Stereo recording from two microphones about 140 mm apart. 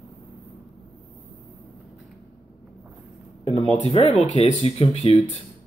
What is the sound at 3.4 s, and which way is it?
Speech, 45° left (ahead or behind).